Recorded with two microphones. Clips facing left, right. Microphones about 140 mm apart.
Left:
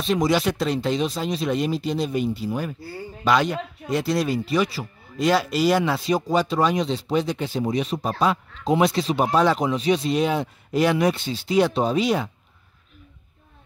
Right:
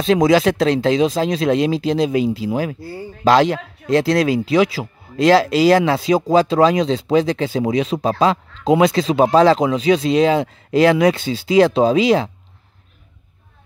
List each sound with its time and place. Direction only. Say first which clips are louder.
0.0 s speech: right 7 dB; 90° right